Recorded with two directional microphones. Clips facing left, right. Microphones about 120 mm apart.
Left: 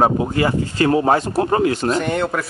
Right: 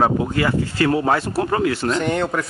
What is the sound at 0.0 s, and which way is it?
Speech, 25° left (ahead or behind).